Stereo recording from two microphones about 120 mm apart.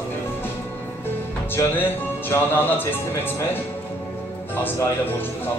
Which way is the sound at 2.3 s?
20° left (ahead or behind).